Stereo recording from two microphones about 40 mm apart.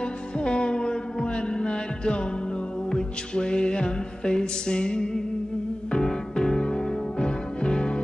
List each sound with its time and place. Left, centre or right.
0.4 s music: left